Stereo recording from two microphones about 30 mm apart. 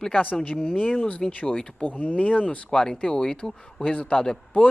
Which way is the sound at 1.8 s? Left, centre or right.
Left.